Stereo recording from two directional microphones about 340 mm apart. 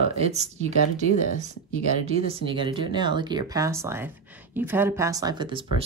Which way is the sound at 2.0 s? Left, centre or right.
Centre.